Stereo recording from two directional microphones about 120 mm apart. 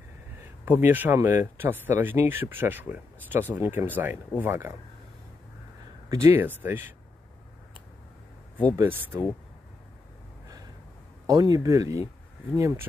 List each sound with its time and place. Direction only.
0.4 s speech: 15° right (ahead or behind)
6.0 s speech: 25° right (ahead or behind)
8.7 s speech: 15° right (ahead or behind)
11.2 s speech: 30° right (ahead or behind)